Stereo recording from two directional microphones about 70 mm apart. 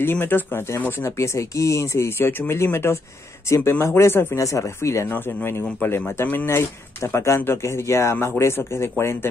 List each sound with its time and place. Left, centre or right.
0.0 s speech: left
1.2 s speech: left
4.4 s speech: left
5.8 s speech: left